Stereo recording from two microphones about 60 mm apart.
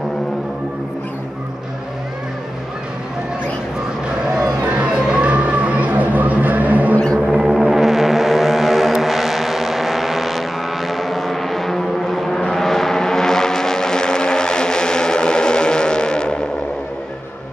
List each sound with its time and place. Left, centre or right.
4.6 s music: centre
7.2 s music: centre